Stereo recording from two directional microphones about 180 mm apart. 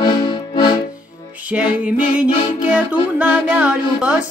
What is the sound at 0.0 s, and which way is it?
Music, 25° left (ahead or behind).